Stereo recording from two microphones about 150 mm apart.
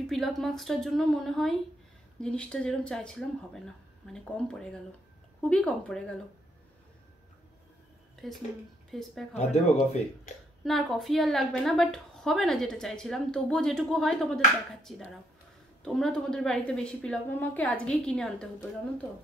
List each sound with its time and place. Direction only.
0.0 s a woman's voice: centre (ahead or behind)
8.9 s a woman's voice: centre (ahead or behind)
9.3 s speech: 45° left (ahead or behind)
10.6 s a woman's voice: centre (ahead or behind)